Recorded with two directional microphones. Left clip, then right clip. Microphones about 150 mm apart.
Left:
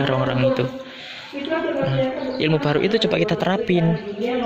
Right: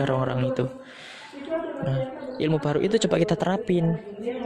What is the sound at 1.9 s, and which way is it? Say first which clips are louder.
Speech: left 8 dB; 30° right (ahead or behind).